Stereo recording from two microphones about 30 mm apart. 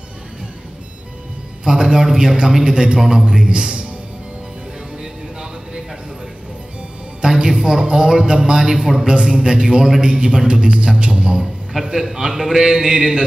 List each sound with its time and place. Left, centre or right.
1.6 s a man's voice: centre
3.0 s a man's voice: centre
3.4 s a man's voice: right
7.4 s a man's voice: centre
7.8 s a man's voice: right
8.5 s a man's voice: centre
9.1 s a man's voice: right
11.8 s a man's voice: centre
12.4 s a man's voice: centre
12.6 s a man's voice: centre